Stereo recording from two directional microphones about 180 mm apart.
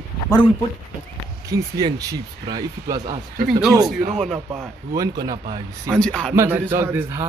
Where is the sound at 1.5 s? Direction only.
20° right (ahead or behind).